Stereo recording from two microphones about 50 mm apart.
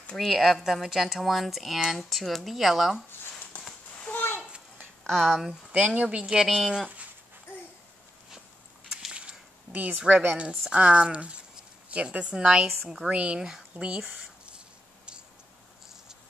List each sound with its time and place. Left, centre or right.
0.1 s speech: centre
3.5 s a sound: left
5.0 s speech: centre
5.5 s speech: right
6.4 s speech: centre
9.1 s a sound: right
9.7 s a woman's voice: right
12.6 s speech: centre
13.1 s speech: right
13.4 s speech: centre
13.8 s speech: right